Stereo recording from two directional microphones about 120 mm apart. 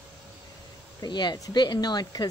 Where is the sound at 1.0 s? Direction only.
40° left (ahead or behind).